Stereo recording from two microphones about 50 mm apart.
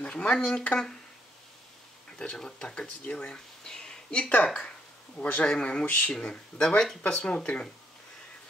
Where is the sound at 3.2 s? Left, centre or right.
Centre.